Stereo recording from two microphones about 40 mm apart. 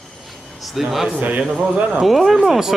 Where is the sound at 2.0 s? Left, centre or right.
Centre.